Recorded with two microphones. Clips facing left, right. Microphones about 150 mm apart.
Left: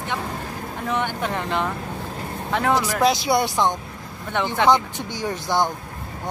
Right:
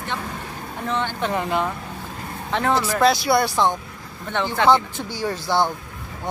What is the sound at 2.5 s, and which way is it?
Speech, 10° left (ahead or behind).